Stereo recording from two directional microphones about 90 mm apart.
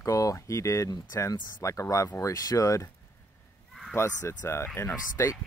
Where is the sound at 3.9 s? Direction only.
30° left (ahead or behind).